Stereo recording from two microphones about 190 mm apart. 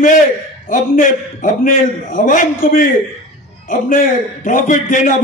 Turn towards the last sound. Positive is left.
turn(degrees=40)  # may be behind; listen again after turning